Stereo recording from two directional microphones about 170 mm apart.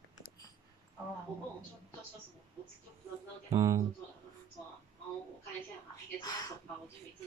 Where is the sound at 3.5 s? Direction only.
20° right (ahead or behind).